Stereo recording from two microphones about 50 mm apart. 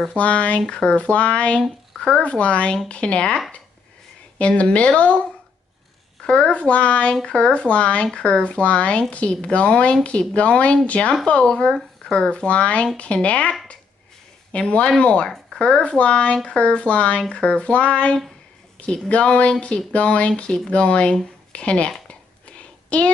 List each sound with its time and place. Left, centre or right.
0.1 s speech: left
2.0 s a sound: centre
2.2 s speech: left
4.4 s speech: left
6.2 s speech: left
12.3 s speech: left
15.2 s speech: centre
15.8 s speech: left
22.6 s a sound: left